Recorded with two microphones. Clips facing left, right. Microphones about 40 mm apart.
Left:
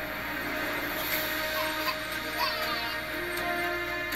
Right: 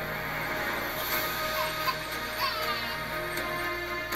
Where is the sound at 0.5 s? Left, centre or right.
Left.